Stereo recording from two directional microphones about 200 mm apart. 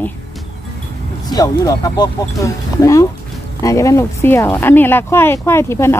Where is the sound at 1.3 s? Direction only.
20° left (ahead or behind).